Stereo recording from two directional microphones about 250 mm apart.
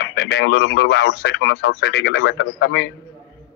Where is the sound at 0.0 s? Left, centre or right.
Left.